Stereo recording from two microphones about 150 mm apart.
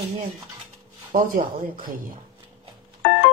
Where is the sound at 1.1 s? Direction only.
65° right (ahead or behind).